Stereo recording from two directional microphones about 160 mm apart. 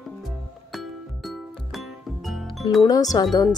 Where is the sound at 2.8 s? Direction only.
25° left (ahead or behind).